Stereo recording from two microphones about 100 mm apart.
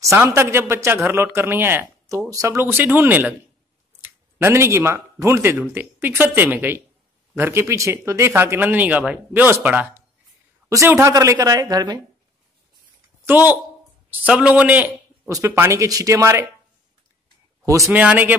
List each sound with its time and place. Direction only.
0.0 s a man's voice: 30° right (ahead or behind)
2.0 s a man's voice: 30° right (ahead or behind); by 10.0 s 15° right (ahead or behind)
10.9 s a woman's voice: 30° right (ahead or behind)
13.2 s speech: 20° right (ahead or behind)
15.2 s a man's voice: 30° right (ahead or behind)
17.6 s a woman's voice: 30° right (ahead or behind)
17.9 s speech: 15° right (ahead or behind)